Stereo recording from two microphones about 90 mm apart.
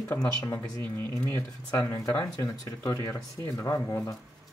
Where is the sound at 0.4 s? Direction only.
40° left (ahead or behind).